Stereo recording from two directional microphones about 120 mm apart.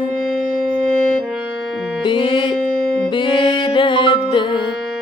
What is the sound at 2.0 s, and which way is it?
Music, 45° left (ahead or behind).